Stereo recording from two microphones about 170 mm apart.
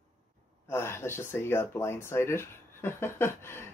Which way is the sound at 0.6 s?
15° left (ahead or behind).